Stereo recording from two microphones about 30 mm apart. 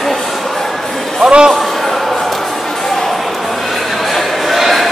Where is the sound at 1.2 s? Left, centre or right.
Right.